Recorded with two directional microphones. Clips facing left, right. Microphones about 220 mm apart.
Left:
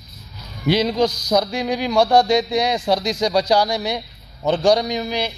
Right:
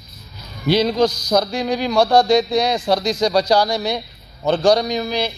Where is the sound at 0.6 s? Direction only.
20° left (ahead or behind).